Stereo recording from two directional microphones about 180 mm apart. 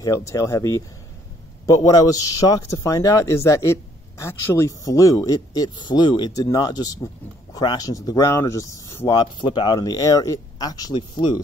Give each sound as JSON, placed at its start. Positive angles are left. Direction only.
{"t": 0.0, "sound": "speech", "side_deg": 15}